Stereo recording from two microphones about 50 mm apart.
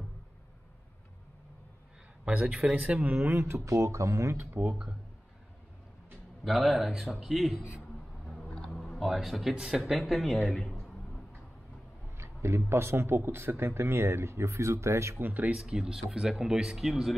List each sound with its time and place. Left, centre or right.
2.2 s speech: right
3.3 s speech: right
6.4 s a man's voice: centre
8.6 s a sound: left
8.9 s a man's voice: centre
12.2 s speech: right
15.2 s speech: right
15.5 s speech: centre
16.8 s a man's voice: centre